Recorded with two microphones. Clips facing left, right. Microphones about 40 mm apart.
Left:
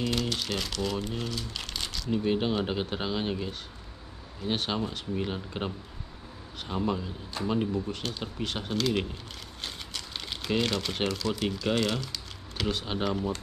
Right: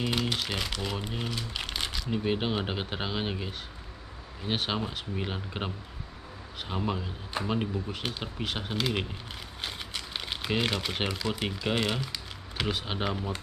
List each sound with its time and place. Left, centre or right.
0.0 s speech: centre
6.7 s speech: centre